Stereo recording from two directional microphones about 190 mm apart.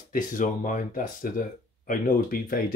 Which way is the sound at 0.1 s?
45° left (ahead or behind).